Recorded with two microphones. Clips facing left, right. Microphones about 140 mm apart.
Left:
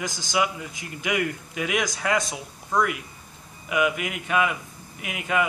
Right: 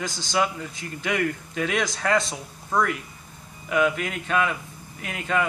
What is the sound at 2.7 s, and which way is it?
Speech, centre (ahead or behind).